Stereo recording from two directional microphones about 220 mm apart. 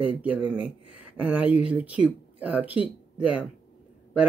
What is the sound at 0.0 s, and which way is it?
Speech, 5° right (ahead or behind).